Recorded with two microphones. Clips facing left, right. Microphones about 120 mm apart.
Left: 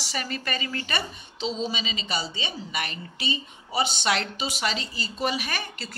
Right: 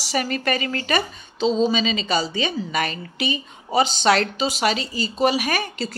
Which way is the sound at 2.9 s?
90° right.